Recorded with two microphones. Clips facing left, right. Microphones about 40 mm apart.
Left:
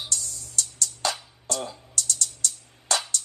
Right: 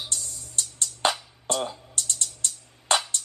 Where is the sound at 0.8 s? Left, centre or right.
Right.